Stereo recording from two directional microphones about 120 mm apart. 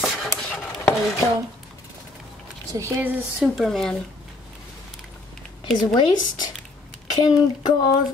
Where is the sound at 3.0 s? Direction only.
15° right (ahead or behind).